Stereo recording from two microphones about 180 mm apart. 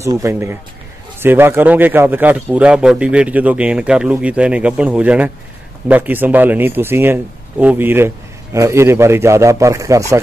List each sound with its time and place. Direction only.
0.0 s speech: 15° right (ahead or behind)